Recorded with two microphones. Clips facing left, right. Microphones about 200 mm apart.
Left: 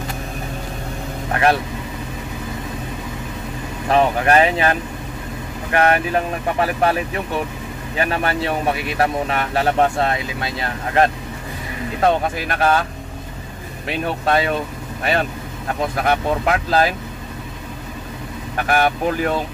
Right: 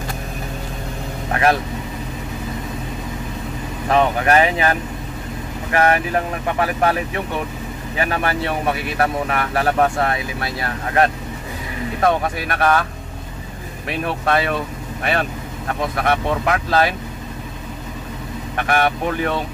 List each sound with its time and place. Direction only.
3.9 s speech: 30° left (ahead or behind)
8.0 s speech: 30° left (ahead or behind)
13.8 s speech: 25° left (ahead or behind)
16.0 s speech: 30° left (ahead or behind)
18.6 s speech: 35° left (ahead or behind)